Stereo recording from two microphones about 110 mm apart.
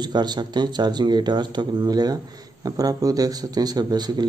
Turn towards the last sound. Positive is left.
turn(degrees=-40)  # may be behind; listen again after turning